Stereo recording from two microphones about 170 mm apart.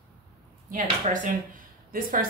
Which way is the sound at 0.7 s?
55° right (ahead or behind).